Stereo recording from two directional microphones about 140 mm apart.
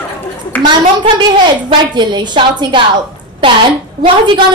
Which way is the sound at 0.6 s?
35° right (ahead or behind).